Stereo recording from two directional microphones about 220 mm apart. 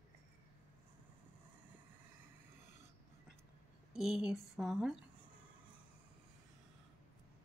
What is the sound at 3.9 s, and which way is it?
Speech, centre (ahead or behind).